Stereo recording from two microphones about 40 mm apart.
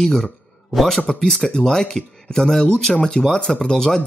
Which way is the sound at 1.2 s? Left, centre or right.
Centre.